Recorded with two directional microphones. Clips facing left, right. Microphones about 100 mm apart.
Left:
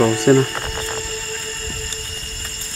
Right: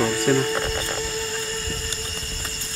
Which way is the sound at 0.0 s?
30° left (ahead or behind).